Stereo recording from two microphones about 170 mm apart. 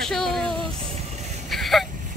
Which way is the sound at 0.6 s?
35° right (ahead or behind).